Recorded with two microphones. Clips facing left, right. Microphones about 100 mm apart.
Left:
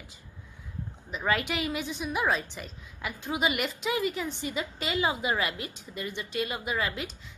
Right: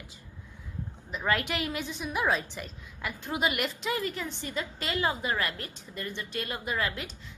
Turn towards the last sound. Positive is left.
turn(degrees=0)  # may be behind; listen again after turning